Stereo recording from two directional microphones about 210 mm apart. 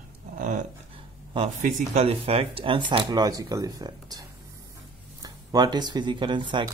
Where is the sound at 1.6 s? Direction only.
30° right (ahead or behind).